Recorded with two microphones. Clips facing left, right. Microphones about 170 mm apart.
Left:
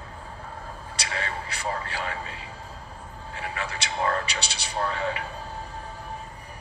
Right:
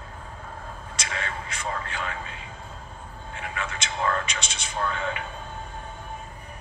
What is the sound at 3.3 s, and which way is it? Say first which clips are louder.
A man's voice: left 1 dB; 35° left (ahead or behind).